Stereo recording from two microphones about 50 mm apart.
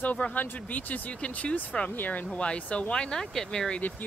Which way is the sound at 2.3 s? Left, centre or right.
Left.